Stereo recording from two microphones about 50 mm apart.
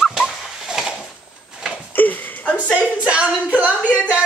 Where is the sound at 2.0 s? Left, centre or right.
Left.